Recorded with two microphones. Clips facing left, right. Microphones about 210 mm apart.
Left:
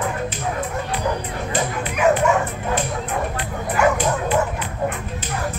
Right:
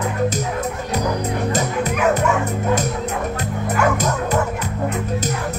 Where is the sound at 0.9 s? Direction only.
40° right (ahead or behind).